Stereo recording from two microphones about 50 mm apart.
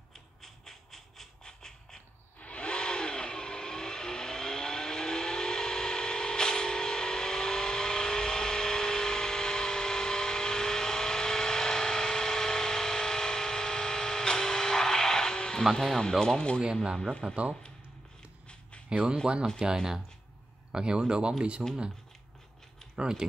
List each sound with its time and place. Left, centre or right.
0.4 s train: centre
2.4 s vehicle: left
17.3 s speech: right
19.2 s speech: centre
20.7 s speech: centre
22.9 s speech: centre